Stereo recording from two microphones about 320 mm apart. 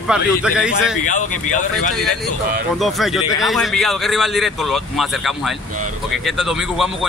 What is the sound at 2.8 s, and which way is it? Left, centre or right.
Speech, centre.